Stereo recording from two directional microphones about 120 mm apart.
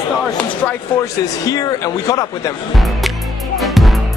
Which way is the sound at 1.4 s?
30° left (ahead or behind).